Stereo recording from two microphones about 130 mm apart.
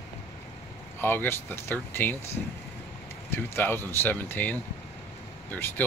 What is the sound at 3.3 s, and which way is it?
Speech, 15° left (ahead or behind).